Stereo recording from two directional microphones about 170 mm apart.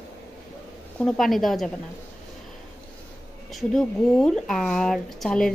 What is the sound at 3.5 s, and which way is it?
Speech, centre (ahead or behind).